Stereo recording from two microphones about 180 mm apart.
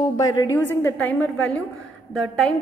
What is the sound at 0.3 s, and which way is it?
A woman's voice, 15° left (ahead or behind).